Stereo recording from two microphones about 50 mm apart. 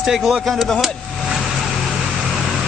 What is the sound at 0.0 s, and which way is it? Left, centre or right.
Speech, centre.